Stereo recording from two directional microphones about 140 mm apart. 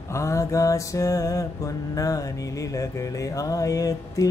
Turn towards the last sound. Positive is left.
turn(degrees=25)  # may be behind; listen again after turning